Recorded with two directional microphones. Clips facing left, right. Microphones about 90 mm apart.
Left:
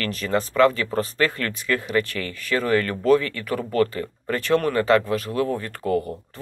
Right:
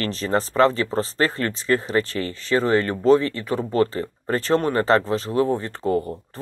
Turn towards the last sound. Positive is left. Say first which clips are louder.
# right 1 dB
turn(degrees=-30)  # may be behind; listen again after turning